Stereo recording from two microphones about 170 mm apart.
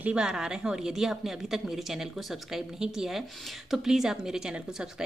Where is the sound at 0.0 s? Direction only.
5° right (ahead or behind).